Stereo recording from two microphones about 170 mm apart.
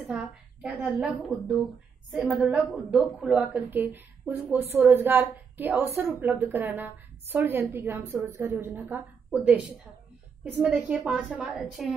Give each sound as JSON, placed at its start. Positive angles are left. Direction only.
{"t": 0.0, "sound": "a woman's voice", "side_deg": -5}